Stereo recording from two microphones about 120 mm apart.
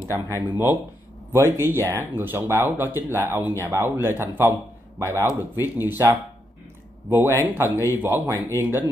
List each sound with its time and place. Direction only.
0.1 s a man's voice: 15° right (ahead or behind)